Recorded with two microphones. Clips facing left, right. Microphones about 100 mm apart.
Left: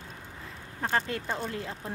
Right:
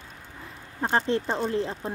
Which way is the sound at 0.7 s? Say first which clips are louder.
Right 5 dB; 30° right (ahead or behind).